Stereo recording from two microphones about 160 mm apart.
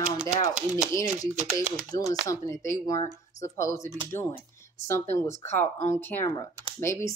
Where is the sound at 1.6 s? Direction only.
55° right (ahead or behind).